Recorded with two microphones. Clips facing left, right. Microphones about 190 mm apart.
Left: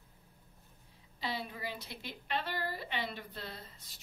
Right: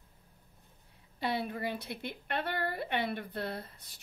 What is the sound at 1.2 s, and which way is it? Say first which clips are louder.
A woman's voice: right 6 dB; 55° right (ahead or behind).